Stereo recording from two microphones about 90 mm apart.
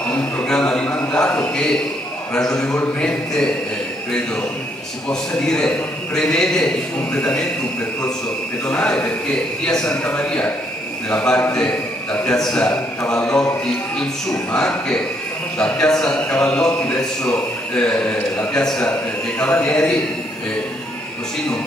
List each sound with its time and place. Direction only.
0.1 s a sound: 15° left (ahead or behind)
1.5 s a man's voice: 5° left (ahead or behind)
5.4 s a man's voice: 10° left (ahead or behind)
8.6 s a man's voice: 10° left (ahead or behind)
14.5 s a man's voice: 10° left (ahead or behind)
18.6 s a man's voice: 5° left (ahead or behind)